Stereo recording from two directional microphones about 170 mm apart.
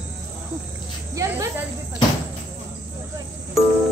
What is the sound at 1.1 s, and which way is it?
Speech, 20° right (ahead or behind).